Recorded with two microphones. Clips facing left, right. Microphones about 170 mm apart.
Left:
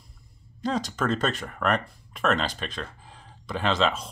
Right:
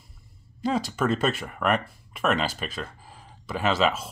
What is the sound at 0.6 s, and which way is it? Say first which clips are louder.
Speech: right 2 dB; 5° right (ahead or behind).